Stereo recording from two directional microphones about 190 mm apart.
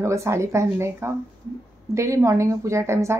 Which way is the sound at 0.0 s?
15° right (ahead or behind).